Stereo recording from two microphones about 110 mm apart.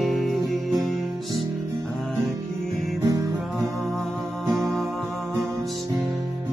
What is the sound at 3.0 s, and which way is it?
Music, 30° right (ahead or behind).